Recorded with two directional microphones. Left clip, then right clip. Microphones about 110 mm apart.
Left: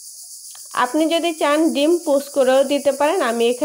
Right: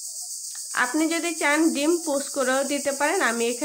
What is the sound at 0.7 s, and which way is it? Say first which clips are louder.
Speech: left 6 dB; 25° left (ahead or behind).